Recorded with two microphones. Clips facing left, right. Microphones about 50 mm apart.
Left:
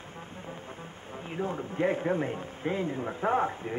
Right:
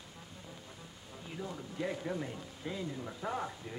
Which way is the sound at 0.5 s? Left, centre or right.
Left.